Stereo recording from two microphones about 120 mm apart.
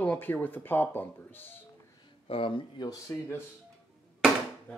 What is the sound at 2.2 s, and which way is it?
Speech, 50° left (ahead or behind).